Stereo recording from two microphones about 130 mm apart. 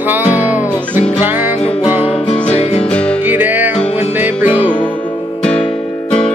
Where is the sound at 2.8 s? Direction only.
10° left (ahead or behind).